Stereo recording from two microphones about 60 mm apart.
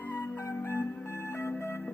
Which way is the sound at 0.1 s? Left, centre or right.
Left.